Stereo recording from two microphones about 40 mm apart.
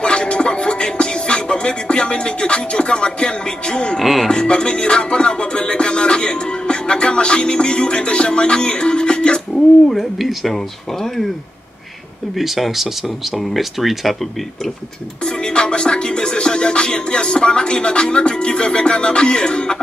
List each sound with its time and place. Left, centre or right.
0.0 s music: left
4.0 s speech: centre
4.3 s music: left
9.5 s speech: centre
12.4 s speech: centre
15.2 s music: left